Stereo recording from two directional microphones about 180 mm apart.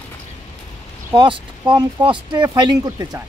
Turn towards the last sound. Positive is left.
turn(degrees=-20)  # may be behind; listen again after turning